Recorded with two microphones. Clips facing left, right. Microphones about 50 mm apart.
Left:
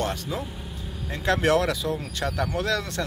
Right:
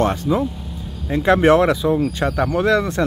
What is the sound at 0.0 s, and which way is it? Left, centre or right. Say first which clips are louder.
Speech: right 10 dB; right.